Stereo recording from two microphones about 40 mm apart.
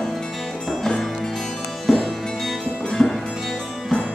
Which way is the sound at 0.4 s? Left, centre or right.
Centre.